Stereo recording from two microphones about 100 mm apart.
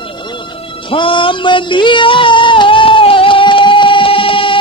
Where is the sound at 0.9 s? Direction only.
60° left (ahead or behind).